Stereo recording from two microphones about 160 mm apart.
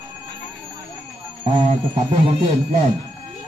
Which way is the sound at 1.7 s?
45° right (ahead or behind).